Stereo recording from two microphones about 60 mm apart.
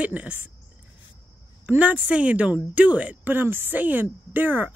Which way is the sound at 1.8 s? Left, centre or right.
Right.